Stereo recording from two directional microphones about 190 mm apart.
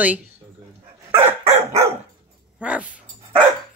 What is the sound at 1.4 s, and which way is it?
Dog, 35° right (ahead or behind).